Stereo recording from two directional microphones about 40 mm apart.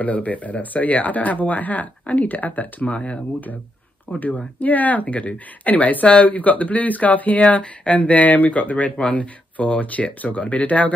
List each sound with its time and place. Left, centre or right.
0.0 s speech: left
4.6 s speech: left